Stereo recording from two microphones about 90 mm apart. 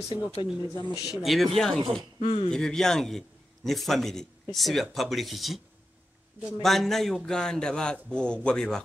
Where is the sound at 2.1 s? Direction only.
90° left.